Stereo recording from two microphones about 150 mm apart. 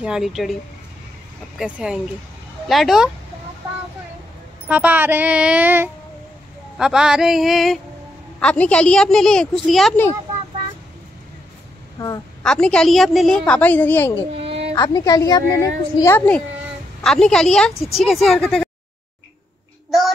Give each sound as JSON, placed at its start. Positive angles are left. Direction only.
{"t": 0.0, "sound": "a woman's voice", "side_deg": -5}
{"t": 1.6, "sound": "a woman's voice", "side_deg": -5}
{"t": 4.6, "sound": "a woman's voice", "side_deg": -10}
{"t": 12.4, "sound": "a woman's voice", "side_deg": 5}
{"t": 14.4, "sound": "a sound", "side_deg": -40}
{"t": 14.7, "sound": "a woman's voice", "side_deg": 25}